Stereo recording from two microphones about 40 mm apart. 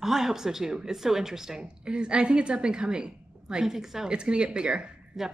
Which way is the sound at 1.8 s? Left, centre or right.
Right.